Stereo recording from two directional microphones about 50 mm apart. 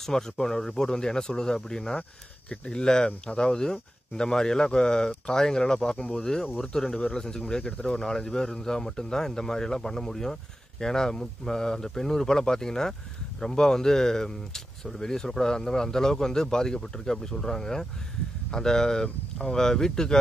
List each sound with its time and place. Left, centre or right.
0.0 s speech: centre
8.0 s speech: centre